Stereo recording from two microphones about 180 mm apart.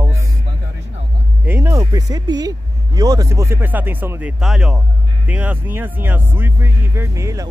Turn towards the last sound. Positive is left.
turn(degrees=-15)  # may be behind; listen again after turning